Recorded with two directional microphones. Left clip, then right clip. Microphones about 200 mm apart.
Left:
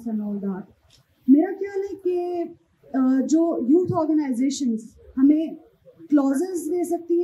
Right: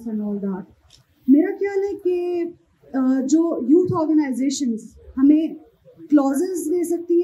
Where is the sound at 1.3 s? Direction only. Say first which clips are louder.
Right 2 dB; 20° right (ahead or behind).